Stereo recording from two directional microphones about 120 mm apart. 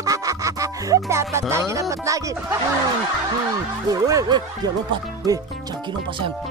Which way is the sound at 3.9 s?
30° right (ahead or behind).